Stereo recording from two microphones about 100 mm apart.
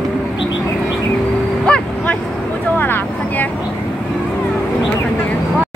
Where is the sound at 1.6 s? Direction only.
10° left (ahead or behind).